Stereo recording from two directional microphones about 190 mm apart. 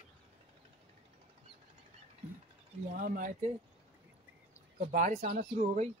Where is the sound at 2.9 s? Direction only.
45° right (ahead or behind).